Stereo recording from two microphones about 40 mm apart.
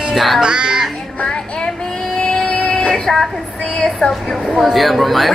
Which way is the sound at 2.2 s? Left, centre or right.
Left.